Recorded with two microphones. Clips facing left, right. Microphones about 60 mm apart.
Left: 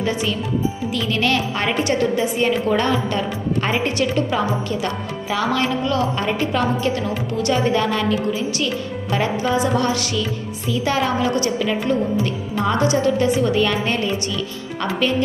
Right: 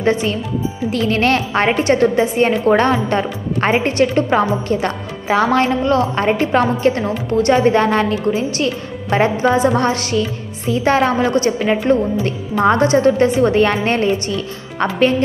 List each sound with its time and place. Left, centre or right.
0.0 s a woman's voice: right